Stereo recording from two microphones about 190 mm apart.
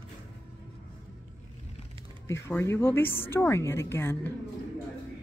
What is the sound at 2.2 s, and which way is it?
A woman's voice, 15° left (ahead or behind).